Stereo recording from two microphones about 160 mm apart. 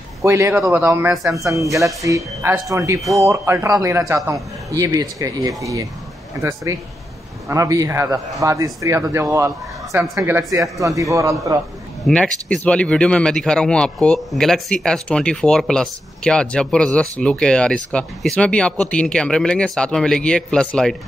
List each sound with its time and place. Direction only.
0.2 s a man's voice: 20° right (ahead or behind)
1.8 s a man's voice: centre (ahead or behind)
2.0 s a man's voice: 15° right (ahead or behind)
12.1 s a man's voice: 5° left (ahead or behind)